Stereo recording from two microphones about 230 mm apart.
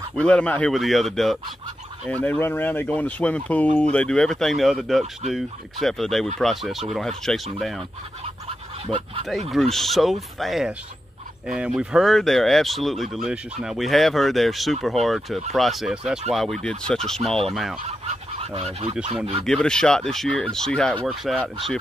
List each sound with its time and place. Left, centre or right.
0.1 s speech: centre
8.8 s speech: right
9.5 s speech: centre
17.8 s goose: right
19.4 s speech: centre